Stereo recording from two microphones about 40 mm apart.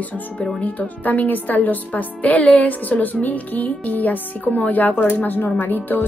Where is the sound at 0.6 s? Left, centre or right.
Left.